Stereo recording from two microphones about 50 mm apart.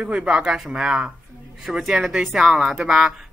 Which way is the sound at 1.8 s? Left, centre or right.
Centre.